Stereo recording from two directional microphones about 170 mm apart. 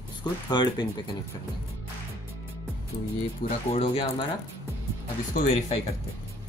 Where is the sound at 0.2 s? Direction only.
25° left (ahead or behind).